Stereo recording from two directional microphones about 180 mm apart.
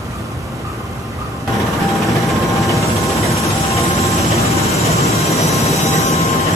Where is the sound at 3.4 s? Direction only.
15° left (ahead or behind).